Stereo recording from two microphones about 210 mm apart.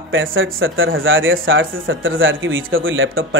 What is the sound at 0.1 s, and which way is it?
Speech, 70° right (ahead or behind).